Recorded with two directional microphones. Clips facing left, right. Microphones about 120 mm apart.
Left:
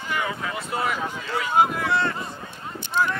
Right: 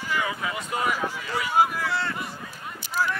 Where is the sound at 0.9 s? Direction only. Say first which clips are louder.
Left 1 dB; 20° left (ahead or behind).